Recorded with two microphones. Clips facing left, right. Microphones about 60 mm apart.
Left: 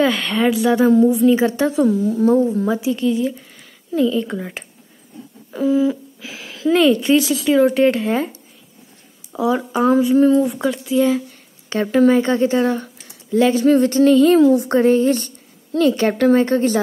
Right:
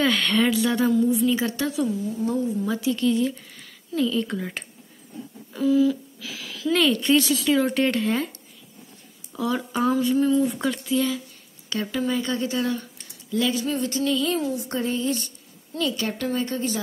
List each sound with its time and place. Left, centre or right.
0.0 s speech: centre
0.8 s a woman's voice: left
2.2 s speech: left
2.8 s speech: centre
5.5 s speech: left
6.8 s a woman's voice: centre
10.1 s a sound: left
10.4 s speech: centre
11.7 s speech: left
13.7 s a sound: left